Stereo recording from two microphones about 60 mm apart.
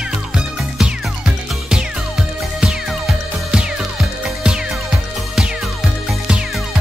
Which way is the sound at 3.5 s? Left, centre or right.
Centre.